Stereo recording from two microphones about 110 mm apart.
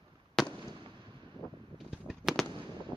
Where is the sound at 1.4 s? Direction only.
35° left (ahead or behind).